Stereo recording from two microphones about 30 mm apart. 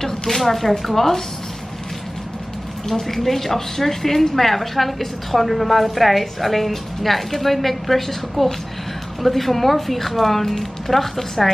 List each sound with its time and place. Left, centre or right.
0.0 s a sound: centre
0.4 s speech: centre
2.9 s a woman's voice: centre